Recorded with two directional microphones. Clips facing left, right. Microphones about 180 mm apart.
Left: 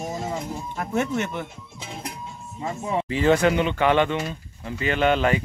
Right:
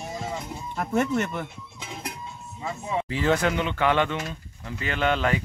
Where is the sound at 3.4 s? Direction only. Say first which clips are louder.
Left 4 dB; 10° left (ahead or behind).